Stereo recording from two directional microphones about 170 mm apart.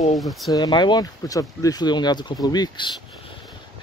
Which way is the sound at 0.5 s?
25° left (ahead or behind).